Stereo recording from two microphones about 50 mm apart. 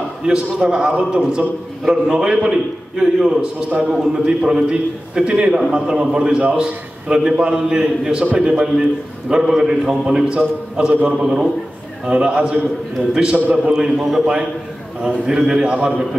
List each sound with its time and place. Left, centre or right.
0.2 s a man's voice: centre
1.9 s a man's voice: centre
2.2 s a man's voice: centre
13.9 s a man's voice: centre
15.0 s a man's voice: centre